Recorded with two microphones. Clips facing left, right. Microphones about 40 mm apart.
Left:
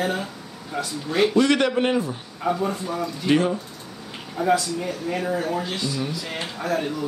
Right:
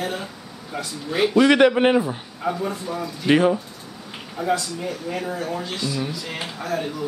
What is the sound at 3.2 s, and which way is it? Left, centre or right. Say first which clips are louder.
Speech: right 3 dB; right.